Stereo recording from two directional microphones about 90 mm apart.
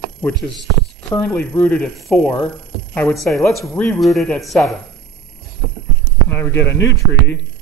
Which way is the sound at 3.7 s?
15° left (ahead or behind).